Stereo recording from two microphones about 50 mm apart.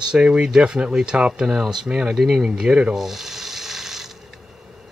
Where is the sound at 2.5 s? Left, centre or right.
Right.